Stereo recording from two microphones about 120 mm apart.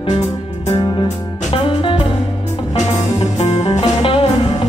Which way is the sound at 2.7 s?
55° left (ahead or behind).